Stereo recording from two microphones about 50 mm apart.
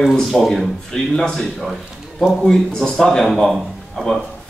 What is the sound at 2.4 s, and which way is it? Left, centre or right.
Speech, centre.